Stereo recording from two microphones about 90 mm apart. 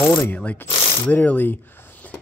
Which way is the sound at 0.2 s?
20° left (ahead or behind).